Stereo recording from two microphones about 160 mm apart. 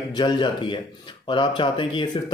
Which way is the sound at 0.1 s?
30° left (ahead or behind).